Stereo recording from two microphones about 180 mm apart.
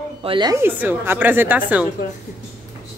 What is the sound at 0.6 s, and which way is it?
A woman's voice, 10° right (ahead or behind).